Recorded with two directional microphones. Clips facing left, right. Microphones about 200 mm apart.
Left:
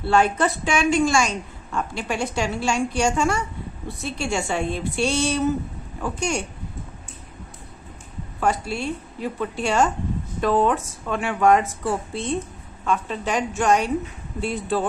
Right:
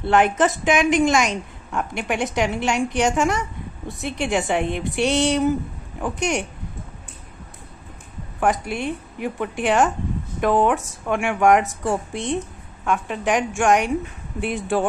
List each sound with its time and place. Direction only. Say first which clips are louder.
0.0 s a woman's voice: right 2 dB; 15° right (ahead or behind)
8.4 s a woman's voice: right 2 dB; 15° right (ahead or behind)